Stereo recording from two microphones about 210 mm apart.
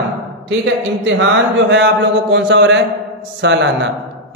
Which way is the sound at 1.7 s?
55° right (ahead or behind).